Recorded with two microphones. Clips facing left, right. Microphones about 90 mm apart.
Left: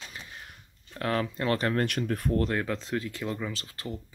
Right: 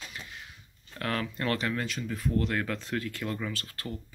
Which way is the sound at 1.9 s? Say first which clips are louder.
Left 4 dB; 60° left (ahead or behind).